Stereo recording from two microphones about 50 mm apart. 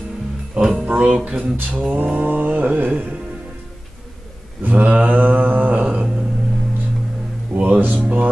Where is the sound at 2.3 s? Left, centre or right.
Right.